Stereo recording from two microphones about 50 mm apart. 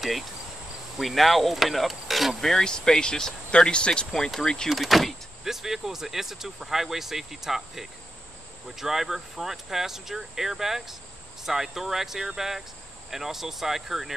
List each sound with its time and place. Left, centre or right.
1.0 s speech: centre
2.5 s speech: centre
4.6 s speech: centre